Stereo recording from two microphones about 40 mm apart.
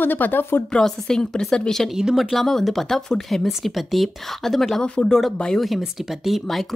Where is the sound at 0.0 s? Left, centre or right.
Left.